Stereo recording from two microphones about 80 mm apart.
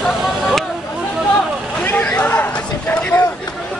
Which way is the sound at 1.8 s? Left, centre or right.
Left.